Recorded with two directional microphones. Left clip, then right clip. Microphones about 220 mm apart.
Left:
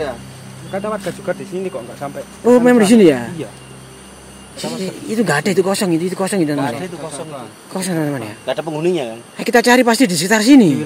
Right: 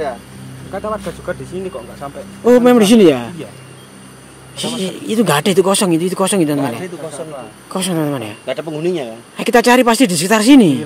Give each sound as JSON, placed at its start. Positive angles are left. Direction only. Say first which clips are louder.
{"t": 0.7, "sound": "speech", "louder": "even", "side_deg": 35}
{"t": 1.5, "sound": "speech", "louder": "left 1 dB", "side_deg": 15}
{"t": 2.4, "sound": "speech", "louder": "right 1 dB", "side_deg": -10}
{"t": 4.6, "sound": "speech", "louder": "right 3 dB", "side_deg": -15}
{"t": 7.7, "sound": "speech", "louder": "right 2 dB", "side_deg": -10}
{"t": 8.5, "sound": "speech", "louder": "left 2 dB", "side_deg": 15}
{"t": 9.4, "sound": "speech", "louder": "right 1 dB", "side_deg": -10}